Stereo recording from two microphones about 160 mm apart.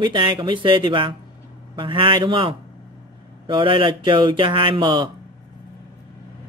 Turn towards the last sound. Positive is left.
turn(degrees=-30)  # may be behind; listen again after turning